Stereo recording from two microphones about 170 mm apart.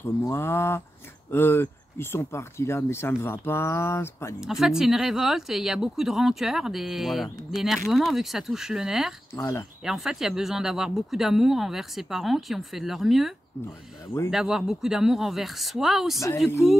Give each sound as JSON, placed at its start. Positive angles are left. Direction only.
{"t": 0.3, "sound": "speech", "side_deg": 15}
{"t": 4.4, "sound": "speech", "side_deg": 0}
{"t": 9.3, "sound": "speech", "side_deg": 15}
{"t": 9.8, "sound": "speech", "side_deg": 0}
{"t": 13.7, "sound": "speech", "side_deg": 15}
{"t": 14.3, "sound": "speech", "side_deg": 0}